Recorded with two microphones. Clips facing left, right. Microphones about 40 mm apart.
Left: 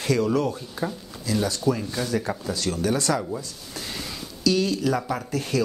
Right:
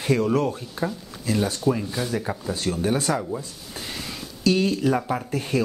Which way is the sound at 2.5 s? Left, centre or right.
Right.